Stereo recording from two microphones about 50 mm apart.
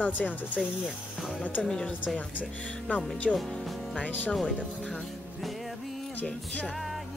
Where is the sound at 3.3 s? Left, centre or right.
Centre.